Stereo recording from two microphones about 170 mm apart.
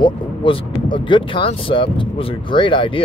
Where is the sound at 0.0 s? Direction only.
30° left (ahead or behind).